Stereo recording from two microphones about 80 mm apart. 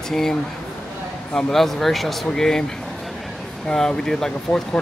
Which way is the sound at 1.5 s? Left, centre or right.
Centre.